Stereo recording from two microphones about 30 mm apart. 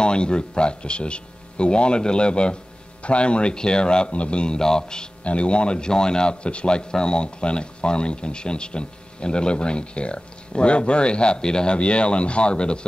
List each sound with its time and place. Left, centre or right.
0.0 s speech: left
4.6 s a man's voice: left
5.2 s speech: left
6.4 s speech: left
6.9 s speech: left